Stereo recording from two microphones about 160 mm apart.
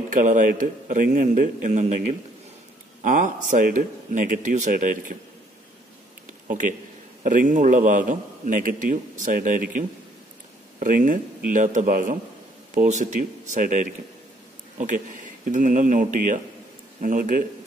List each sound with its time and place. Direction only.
0.1 s a man's voice: 55° right (ahead or behind)
3.0 s a man's voice: 50° right (ahead or behind)
6.4 s a man's voice: 55° right (ahead or behind)
12.7 s a man's voice: 50° right (ahead or behind)